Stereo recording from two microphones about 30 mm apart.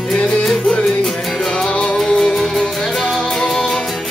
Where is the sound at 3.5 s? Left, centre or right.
Centre.